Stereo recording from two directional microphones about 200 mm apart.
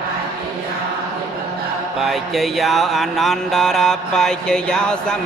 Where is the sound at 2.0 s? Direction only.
Centre (ahead or behind).